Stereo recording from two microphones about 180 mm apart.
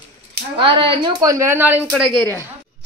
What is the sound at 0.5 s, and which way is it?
A woman's voice, 25° right (ahead or behind).